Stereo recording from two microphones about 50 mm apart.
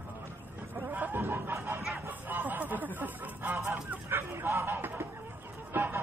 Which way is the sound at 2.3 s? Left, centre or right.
Right.